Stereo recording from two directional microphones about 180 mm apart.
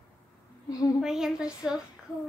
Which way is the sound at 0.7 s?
20° left (ahead or behind).